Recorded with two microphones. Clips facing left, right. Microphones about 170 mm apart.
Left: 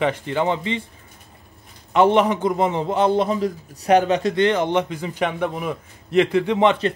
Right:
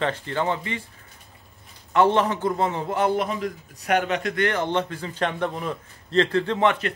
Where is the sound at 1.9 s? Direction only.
15° left (ahead or behind).